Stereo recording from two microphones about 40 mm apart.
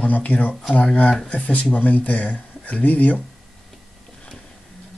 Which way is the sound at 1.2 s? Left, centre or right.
Left.